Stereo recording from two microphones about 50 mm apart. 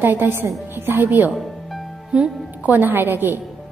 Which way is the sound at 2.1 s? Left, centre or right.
Right.